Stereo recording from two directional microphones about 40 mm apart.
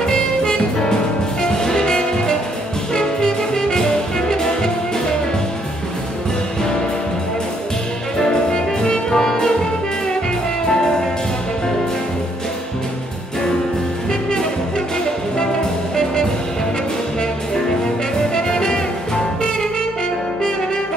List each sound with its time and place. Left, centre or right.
0.0 s music: centre
8.2 s music: centre
10.7 s music: centre
18.3 s music: centre